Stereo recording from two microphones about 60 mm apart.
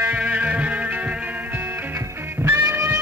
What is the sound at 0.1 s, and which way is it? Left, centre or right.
Music, right.